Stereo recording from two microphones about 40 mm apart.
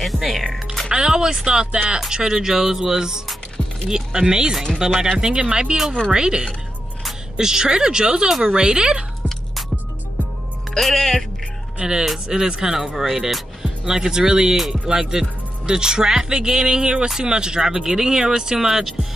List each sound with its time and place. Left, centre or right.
0.0 s speech: centre
0.8 s speech: centre
10.7 s speech: centre
12.0 s speech: centre